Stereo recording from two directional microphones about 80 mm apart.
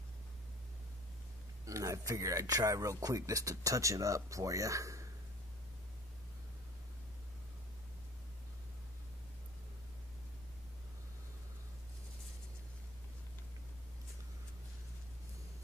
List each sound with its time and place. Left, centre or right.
1.7 s speech: right